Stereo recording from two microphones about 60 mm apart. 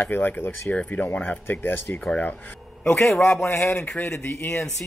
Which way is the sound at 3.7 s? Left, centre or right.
Left.